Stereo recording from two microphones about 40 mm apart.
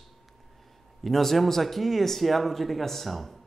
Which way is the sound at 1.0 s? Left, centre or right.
Centre.